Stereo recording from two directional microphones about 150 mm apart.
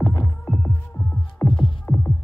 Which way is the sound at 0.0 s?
15° left (ahead or behind).